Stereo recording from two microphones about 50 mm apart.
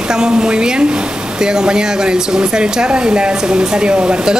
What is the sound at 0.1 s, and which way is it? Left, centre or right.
Speech, centre.